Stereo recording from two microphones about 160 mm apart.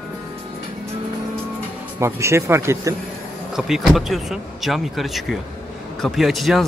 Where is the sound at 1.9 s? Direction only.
15° right (ahead or behind).